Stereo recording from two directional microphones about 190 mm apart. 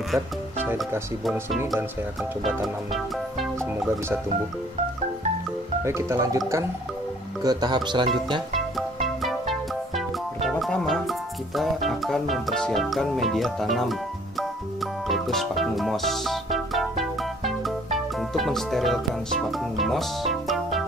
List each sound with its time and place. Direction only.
2.4 s music: centre (ahead or behind)
5.9 s speech: 15° right (ahead or behind)
8.5 s music: centre (ahead or behind)
15.0 s music: centre (ahead or behind)